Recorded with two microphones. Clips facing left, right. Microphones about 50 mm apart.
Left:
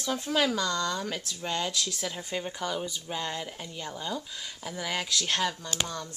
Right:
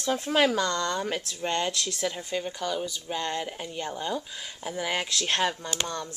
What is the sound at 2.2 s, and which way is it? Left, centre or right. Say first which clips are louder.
Speech: right 2 dB; centre.